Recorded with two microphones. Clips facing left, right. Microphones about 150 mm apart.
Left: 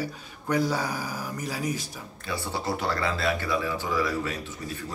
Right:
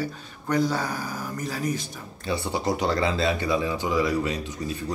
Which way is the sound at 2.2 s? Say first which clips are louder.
Right 4 dB; 15° right (ahead or behind).